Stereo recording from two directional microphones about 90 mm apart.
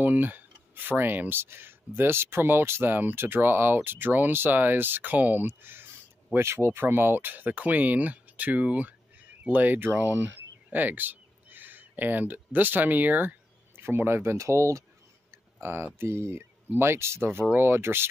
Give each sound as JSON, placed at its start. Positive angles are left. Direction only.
{"t": 0.0, "sound": "speech", "side_deg": -20}